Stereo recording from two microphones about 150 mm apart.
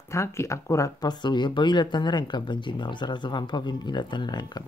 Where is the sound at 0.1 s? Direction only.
20° left (ahead or behind).